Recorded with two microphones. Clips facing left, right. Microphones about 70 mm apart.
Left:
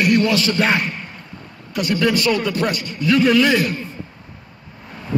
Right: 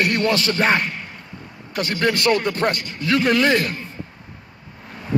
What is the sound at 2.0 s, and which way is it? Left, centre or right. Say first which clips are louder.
Speech: even; right.